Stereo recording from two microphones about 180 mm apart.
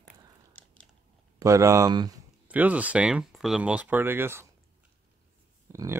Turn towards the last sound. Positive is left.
turn(degrees=-15)  # may be behind; listen again after turning